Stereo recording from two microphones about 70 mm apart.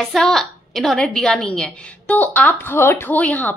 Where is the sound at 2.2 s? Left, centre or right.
Left.